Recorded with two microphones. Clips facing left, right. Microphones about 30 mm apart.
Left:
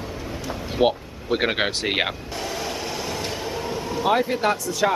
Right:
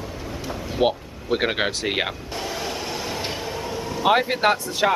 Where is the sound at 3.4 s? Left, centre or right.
Centre.